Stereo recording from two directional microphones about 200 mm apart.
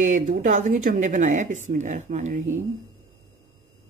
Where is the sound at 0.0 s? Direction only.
40° right (ahead or behind).